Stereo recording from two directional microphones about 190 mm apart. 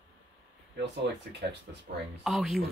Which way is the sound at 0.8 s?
65° right (ahead or behind).